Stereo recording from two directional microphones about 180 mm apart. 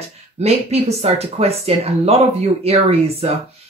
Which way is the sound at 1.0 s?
35° right (ahead or behind).